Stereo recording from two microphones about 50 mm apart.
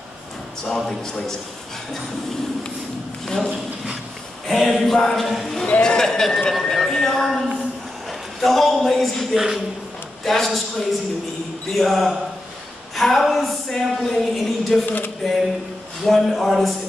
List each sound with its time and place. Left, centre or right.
0.7 s a man's voice: centre
3.4 s a sound: centre
4.5 s speech: centre
5.8 s a man's voice: centre
8.1 s a sound: centre
8.8 s a woman's voice: centre